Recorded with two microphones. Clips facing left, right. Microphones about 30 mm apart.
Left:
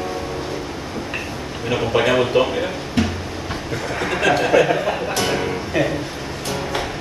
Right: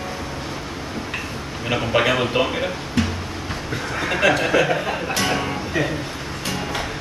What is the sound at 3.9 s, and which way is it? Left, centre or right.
Speech, centre.